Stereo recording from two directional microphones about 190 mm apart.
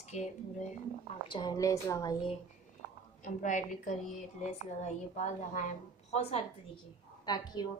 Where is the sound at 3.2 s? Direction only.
40° left (ahead or behind).